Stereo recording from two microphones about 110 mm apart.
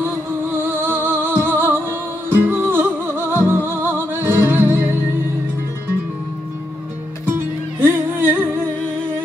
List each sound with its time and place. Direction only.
0.5 s music: 20° right (ahead or behind)
7.2 s music: 20° right (ahead or behind)